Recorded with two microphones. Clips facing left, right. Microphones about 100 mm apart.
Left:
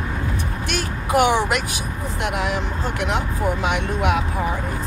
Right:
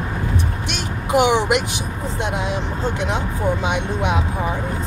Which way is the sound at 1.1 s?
20° right (ahead or behind).